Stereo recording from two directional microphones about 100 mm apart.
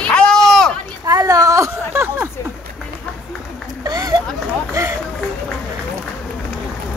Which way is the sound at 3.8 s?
40° right (ahead or behind).